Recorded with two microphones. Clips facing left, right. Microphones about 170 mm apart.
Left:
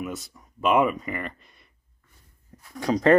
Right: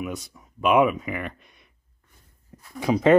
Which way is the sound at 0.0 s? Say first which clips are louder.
Right 1 dB; centre (ahead or behind).